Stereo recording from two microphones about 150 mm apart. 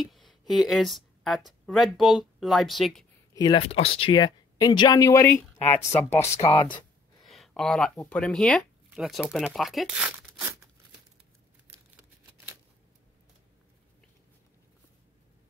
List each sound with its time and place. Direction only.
0.0 s speech: centre (ahead or behind)
3.3 s speech: 30° left (ahead or behind)
3.7 s speech: 40° left (ahead or behind); by 6.1 s 15° left (ahead or behind)
6.4 s speech: 35° left (ahead or behind)
7.2 s speech: centre (ahead or behind)